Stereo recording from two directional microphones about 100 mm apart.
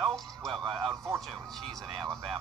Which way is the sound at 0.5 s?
55° right (ahead or behind).